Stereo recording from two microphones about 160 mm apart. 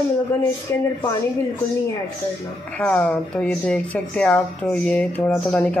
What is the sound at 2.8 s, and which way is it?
A woman's voice, 10° left (ahead or behind).